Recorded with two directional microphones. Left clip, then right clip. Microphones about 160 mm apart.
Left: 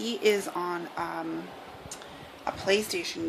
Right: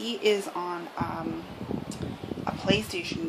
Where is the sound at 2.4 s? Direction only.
Centre (ahead or behind).